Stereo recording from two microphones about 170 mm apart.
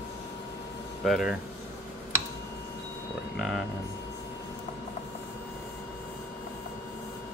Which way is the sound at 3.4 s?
Centre (ahead or behind).